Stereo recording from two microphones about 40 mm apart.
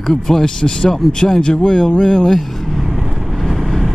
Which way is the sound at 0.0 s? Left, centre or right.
Centre.